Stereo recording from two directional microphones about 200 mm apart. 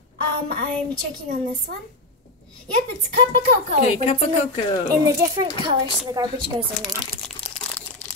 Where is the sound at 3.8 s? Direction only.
30° left (ahead or behind).